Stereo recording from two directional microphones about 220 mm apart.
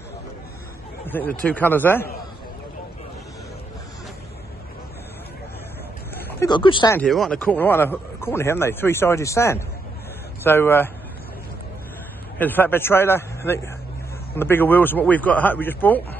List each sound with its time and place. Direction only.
1.0 s speech: 10° left (ahead or behind)
6.4 s speech: 20° left (ahead or behind)
7.0 s speech: centre (ahead or behind)
12.4 s speech: 10° left (ahead or behind)